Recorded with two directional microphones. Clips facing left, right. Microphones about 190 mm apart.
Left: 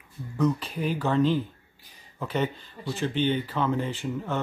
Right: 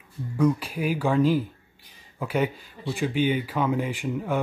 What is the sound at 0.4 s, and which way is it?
Speech, 10° right (ahead or behind).